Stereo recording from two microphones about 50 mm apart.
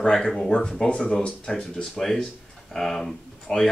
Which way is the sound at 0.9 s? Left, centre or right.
Left.